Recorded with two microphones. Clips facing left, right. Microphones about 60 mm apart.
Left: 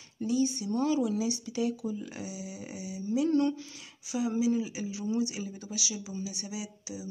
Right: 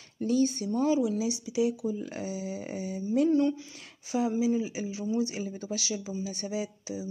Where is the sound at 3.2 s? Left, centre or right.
Centre.